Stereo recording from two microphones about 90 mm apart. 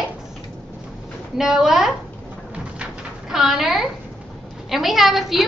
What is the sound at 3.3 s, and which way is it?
A woman's voice, 5° right (ahead or behind).